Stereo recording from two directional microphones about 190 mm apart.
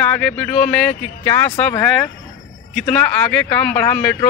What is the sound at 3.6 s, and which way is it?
Speech, 10° left (ahead or behind).